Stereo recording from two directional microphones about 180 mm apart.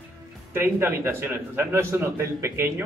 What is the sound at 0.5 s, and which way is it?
A man's voice, 15° right (ahead or behind).